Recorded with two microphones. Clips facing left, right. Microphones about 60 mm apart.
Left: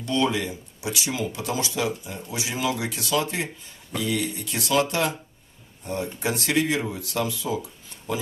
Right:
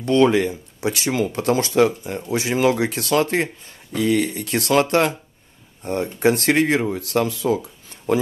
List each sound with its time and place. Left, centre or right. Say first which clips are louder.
0.0 s speech: right 8 dB; right